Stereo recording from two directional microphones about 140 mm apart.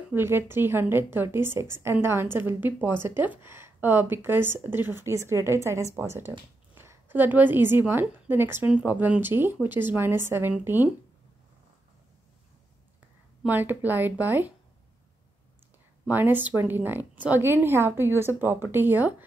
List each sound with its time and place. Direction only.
0.1 s a woman's voice: 15° right (ahead or behind)
13.5 s a woman's voice: 15° right (ahead or behind)
16.1 s a woman's voice: 15° right (ahead or behind)